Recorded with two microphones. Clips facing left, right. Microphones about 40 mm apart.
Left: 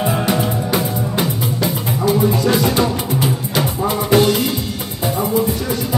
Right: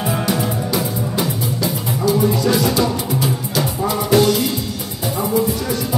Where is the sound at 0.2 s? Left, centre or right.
Left.